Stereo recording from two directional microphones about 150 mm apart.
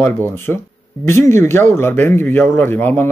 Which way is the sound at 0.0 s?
15° left (ahead or behind).